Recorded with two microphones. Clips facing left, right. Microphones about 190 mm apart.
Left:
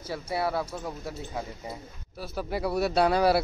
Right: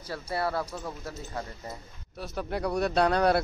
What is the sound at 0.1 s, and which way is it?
Speech, 10° left (ahead or behind).